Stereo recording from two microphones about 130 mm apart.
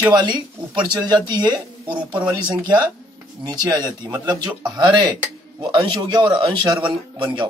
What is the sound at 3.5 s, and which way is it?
A man's voice, 35° right (ahead or behind).